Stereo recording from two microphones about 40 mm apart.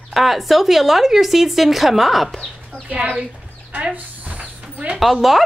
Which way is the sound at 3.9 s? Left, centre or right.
Right.